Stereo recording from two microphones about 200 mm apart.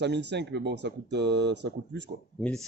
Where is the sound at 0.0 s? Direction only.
60° right (ahead or behind).